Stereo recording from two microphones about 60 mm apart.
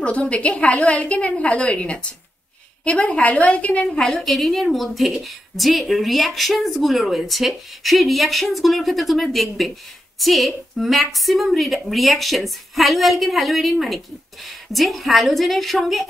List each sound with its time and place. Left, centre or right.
0.0 s a woman's voice: left
4.0 s a woman's voice: centre